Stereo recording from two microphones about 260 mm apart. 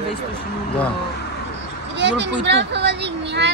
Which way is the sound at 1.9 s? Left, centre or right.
Right.